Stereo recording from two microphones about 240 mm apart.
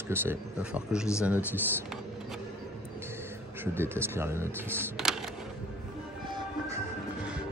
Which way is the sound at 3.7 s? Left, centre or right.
Centre.